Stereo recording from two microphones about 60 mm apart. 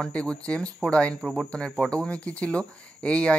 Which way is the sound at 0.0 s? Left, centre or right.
Centre.